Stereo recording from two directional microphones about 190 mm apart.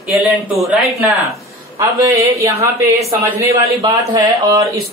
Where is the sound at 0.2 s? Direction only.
Centre (ahead or behind).